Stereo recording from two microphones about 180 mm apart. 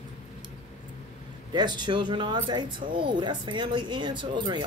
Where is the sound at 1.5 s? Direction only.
25° right (ahead or behind).